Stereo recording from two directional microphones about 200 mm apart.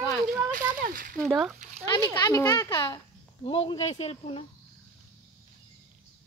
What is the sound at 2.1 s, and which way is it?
A child's voice, 15° left (ahead or behind).